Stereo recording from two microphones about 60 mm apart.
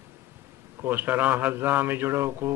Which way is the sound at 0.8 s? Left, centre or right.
Right.